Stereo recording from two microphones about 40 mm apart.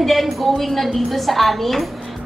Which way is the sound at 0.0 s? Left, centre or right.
Centre.